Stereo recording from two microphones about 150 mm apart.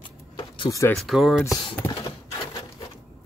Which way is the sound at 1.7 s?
15° left (ahead or behind).